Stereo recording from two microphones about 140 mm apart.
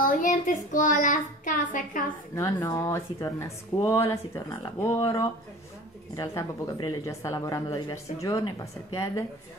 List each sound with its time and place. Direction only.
0.0 s a woman's voice: 65° left (ahead or behind)
2.3 s speech: 25° left (ahead or behind)